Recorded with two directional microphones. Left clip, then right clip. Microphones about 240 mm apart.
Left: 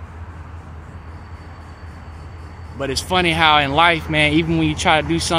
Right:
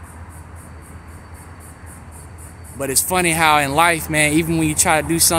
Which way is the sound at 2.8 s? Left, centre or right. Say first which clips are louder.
Even; centre.